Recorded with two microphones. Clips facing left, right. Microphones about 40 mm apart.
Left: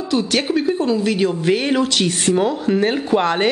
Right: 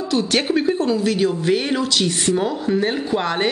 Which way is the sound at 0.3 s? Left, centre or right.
Centre.